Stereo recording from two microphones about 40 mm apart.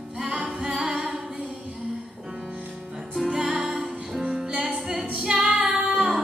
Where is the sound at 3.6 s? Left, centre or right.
Centre.